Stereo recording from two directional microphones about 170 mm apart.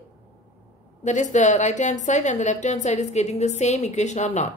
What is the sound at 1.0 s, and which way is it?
A woman's voice, 45° left (ahead or behind).